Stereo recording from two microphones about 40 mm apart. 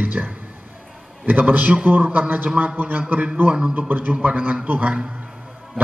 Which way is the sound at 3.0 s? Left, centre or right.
Right.